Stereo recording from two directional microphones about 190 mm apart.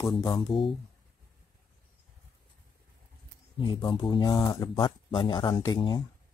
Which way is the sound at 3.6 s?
25° left (ahead or behind).